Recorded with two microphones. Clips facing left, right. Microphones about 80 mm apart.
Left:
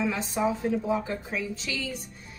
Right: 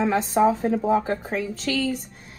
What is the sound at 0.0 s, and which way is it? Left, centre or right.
A woman's voice, right.